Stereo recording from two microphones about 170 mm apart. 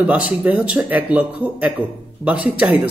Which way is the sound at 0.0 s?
10° right (ahead or behind).